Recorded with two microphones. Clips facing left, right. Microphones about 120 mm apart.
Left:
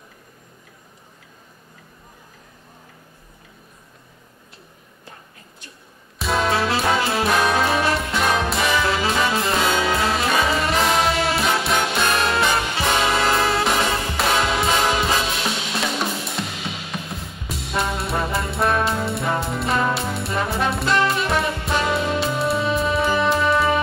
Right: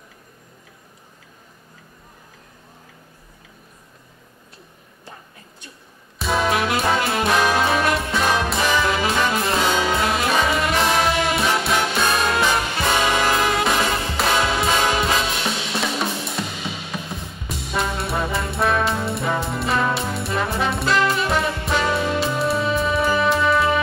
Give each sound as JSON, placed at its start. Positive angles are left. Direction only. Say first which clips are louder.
{"t": 6.1, "sound": "music", "louder": "even", "side_deg": 0}
{"t": 7.1, "sound": "brass instrument", "louder": "even", "side_deg": 0}
{"t": 8.1, "sound": "music", "louder": "even", "side_deg": 0}
{"t": 13.3, "sound": "music", "louder": "even", "side_deg": 30}
{"t": 13.7, "sound": "music", "louder": "even", "side_deg": 0}